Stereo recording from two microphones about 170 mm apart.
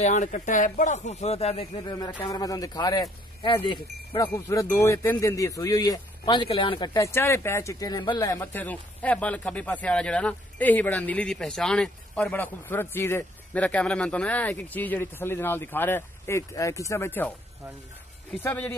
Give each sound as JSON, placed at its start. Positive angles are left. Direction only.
{"t": 0.0, "sound": "speech", "side_deg": 45}
{"t": 1.9, "sound": "a man's voice", "side_deg": 25}
{"t": 6.9, "sound": "speech", "side_deg": 15}
{"t": 18.3, "sound": "speech", "side_deg": 10}